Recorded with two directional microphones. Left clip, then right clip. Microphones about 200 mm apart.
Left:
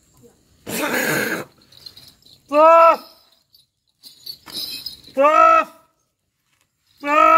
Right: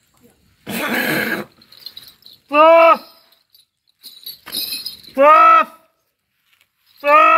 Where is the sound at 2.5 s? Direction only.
30° left (ahead or behind).